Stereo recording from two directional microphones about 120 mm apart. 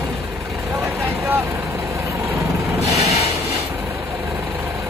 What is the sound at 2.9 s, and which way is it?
Rub, 65° left (ahead or behind).